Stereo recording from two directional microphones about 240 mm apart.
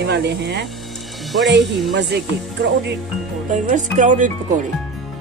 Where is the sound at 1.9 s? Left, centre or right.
Right.